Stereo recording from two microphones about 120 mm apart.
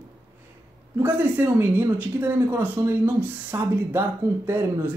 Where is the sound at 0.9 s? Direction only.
15° right (ahead or behind).